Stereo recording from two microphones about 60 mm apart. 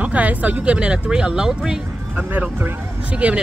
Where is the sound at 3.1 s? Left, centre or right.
Right.